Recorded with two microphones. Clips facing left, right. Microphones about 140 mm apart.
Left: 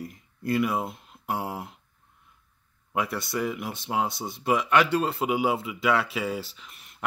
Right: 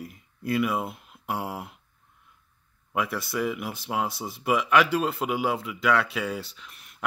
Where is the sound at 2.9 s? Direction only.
Centre (ahead or behind).